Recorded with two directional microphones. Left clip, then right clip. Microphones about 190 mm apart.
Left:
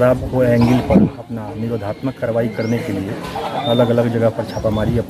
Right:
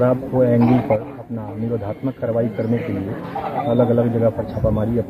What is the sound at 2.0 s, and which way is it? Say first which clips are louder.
Speech: left 2 dB; 15° left (ahead or behind).